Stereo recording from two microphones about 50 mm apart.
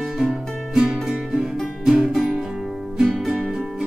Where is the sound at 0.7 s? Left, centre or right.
Centre.